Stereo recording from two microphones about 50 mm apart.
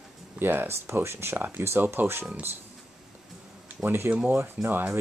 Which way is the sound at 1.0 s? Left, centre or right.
Right.